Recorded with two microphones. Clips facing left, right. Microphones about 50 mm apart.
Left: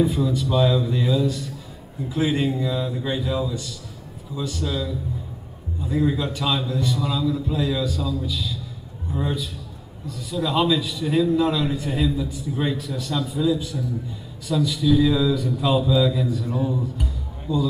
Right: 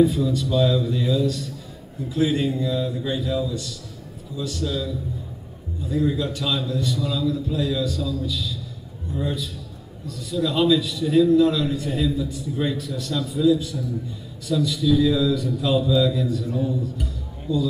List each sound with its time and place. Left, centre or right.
0.0 s a man's voice: centre